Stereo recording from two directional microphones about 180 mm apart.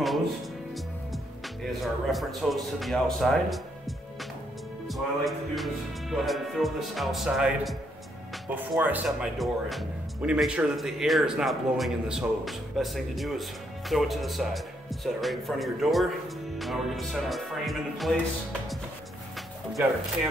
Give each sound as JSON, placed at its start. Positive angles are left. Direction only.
{"t": 1.7, "sound": "speech", "side_deg": 0}
{"t": 19.3, "sound": "music", "side_deg": 0}